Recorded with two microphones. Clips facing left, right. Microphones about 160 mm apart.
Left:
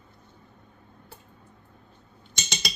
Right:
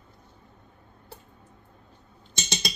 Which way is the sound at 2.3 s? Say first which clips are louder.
Right 3 dB; 30° right (ahead or behind).